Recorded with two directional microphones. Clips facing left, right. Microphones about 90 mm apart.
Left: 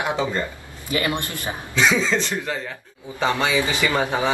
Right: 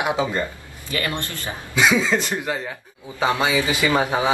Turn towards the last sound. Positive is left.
turn(degrees=-15)  # may be behind; listen again after turning